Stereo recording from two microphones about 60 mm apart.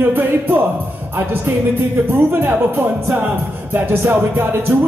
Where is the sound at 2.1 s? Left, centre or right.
Right.